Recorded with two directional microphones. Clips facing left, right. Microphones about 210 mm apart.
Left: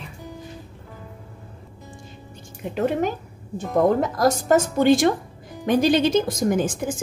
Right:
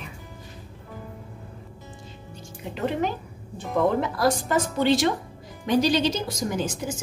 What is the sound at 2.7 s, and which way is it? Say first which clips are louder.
A woman's voice: left 4 dB; 50° left (ahead or behind).